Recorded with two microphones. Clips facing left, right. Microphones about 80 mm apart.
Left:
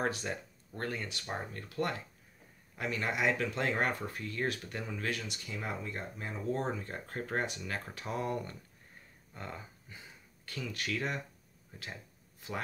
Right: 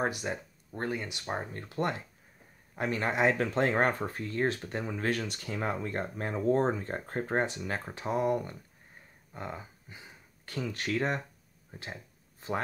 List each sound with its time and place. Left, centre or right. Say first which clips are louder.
0.0 s speech: right 3 dB; centre
10.4 s speech: right 5 dB; right
11.8 s a sound: right 3 dB; right